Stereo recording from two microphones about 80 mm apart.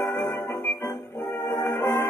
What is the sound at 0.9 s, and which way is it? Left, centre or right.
Music, left.